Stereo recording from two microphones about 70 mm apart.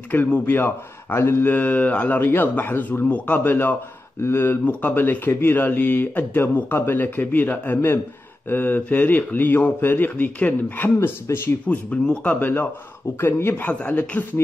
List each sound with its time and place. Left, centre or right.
0.1 s speech: left
4.6 s speech: left
11.0 s speech: left
11.6 s speech: centre
12.4 s speech: left